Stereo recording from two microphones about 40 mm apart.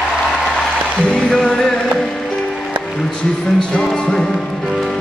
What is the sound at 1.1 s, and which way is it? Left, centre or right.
Music, centre.